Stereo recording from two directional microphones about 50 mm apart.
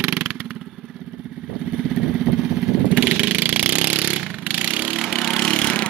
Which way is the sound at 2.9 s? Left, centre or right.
Right.